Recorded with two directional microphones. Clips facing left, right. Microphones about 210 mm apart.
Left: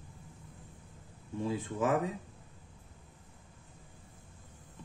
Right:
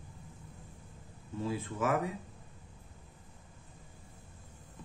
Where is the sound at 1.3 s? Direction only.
15° left (ahead or behind).